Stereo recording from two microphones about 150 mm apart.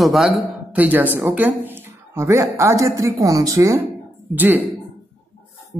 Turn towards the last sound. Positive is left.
turn(degrees=-10)  # may be behind; listen again after turning